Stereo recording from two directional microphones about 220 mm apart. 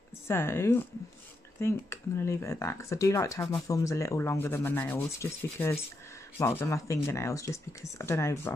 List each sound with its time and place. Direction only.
0.3 s speech: 10° left (ahead or behind)